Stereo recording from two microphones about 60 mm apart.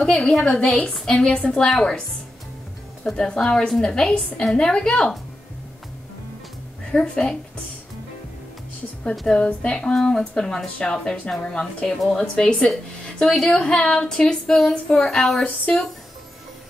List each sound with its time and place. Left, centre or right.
0.0 s speech: centre
3.2 s speech: centre
6.9 s speech: centre
9.1 s a woman's voice: centre
9.6 s speech: centre